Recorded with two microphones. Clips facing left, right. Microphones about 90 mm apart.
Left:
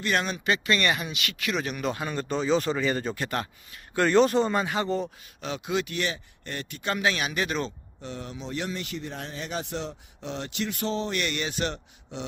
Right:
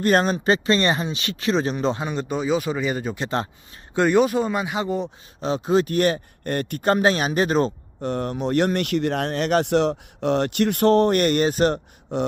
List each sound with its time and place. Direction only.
0.0 s speech: 40° right (ahead or behind)
2.0 s speech: 15° right (ahead or behind)
3.3 s speech: 25° right (ahead or behind)
4.0 s speech: 10° right (ahead or behind)
5.4 s speech: 35° right (ahead or behind)
8.0 s speech: 55° right (ahead or behind)